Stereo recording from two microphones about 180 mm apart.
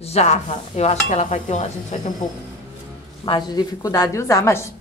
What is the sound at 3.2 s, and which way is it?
A woman's voice, 25° left (ahead or behind).